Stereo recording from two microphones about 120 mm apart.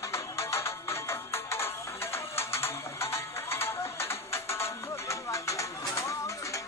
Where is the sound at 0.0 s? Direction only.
25° left (ahead or behind).